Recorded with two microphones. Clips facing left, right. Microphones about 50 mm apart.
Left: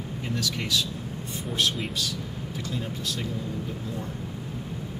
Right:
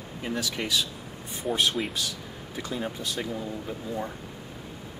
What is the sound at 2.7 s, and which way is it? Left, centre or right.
Speech, centre.